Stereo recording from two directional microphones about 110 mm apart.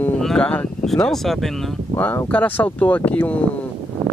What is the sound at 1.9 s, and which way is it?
Speech, 20° left (ahead or behind).